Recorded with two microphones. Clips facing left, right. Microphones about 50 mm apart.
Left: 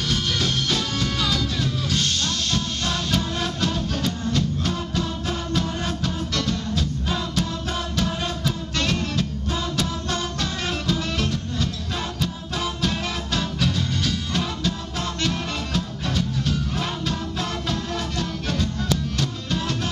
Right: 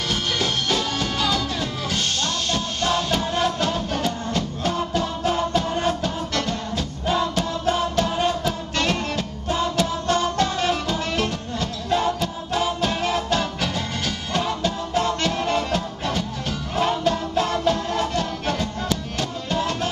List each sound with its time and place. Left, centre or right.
0.1 s music: centre
7.9 s music: right